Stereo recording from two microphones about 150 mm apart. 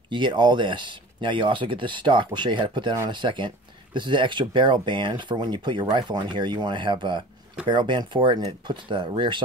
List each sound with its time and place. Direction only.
0.1 s speech: 30° right (ahead or behind)